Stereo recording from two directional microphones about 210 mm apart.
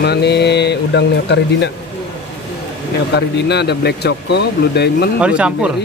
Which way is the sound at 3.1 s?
50° left (ahead or behind).